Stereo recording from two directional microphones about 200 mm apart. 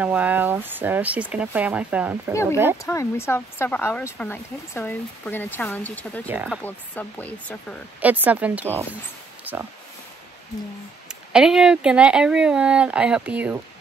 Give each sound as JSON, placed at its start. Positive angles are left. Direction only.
{"t": 0.0, "sound": "speech", "side_deg": -10}
{"t": 2.8, "sound": "speech", "side_deg": 15}
{"t": 6.2, "sound": "speech", "side_deg": -10}
{"t": 6.6, "sound": "speech", "side_deg": 10}
{"t": 8.0, "sound": "speech", "side_deg": -10}
{"t": 9.4, "sound": "a sound", "side_deg": -10}
{"t": 11.1, "sound": "speech", "side_deg": -5}